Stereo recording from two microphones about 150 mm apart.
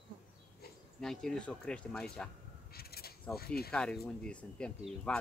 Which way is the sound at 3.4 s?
90° left.